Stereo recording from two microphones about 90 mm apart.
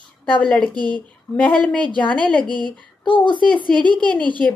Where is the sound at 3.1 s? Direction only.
60° left (ahead or behind).